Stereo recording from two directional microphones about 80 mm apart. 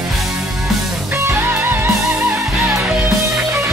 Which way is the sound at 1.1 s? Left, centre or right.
Right.